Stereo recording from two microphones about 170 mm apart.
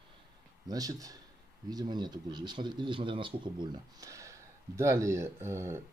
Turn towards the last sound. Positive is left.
turn(degrees=-15)  # may be behind; listen again after turning